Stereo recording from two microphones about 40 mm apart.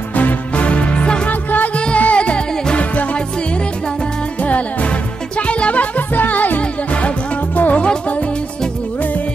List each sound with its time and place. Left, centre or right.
0.1 s music: left
0.6 s music: left
1.3 s music: left
2.0 s music: left
2.8 s music: left
4.4 s music: left
6.6 s music: left